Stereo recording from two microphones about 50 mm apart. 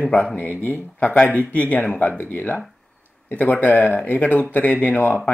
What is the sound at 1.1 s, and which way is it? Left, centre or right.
Speech, left.